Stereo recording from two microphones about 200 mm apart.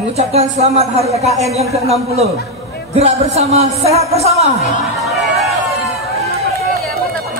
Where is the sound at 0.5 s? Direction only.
35° right (ahead or behind).